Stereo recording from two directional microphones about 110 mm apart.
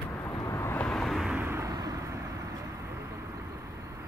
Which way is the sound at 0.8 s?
5° left (ahead or behind).